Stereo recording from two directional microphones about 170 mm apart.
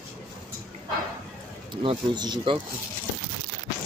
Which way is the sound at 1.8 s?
25° right (ahead or behind).